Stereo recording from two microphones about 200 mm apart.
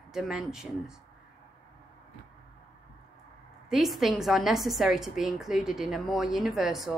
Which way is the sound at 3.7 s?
Centre (ahead or behind).